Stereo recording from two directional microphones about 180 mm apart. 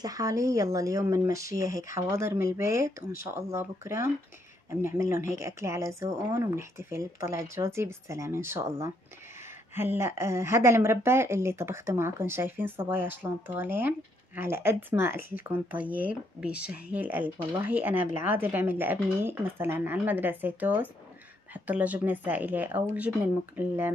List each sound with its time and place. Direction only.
0.0 s a woman's voice: 20° right (ahead or behind)